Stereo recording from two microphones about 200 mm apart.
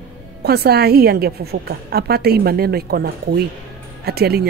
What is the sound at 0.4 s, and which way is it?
Speech, 55° right (ahead or behind).